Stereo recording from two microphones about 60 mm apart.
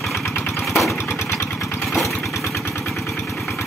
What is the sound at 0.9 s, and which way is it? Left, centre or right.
Engine, left.